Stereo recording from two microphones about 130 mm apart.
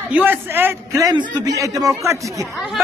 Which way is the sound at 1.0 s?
30° right (ahead or behind).